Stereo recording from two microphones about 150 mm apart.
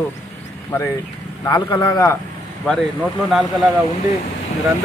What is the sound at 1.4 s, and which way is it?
Speech, 30° left (ahead or behind).